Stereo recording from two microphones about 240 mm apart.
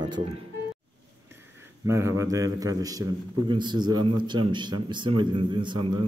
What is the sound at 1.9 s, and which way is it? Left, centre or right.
A man's voice, centre.